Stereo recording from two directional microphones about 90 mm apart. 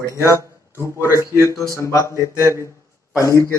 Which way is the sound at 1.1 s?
35° left (ahead or behind).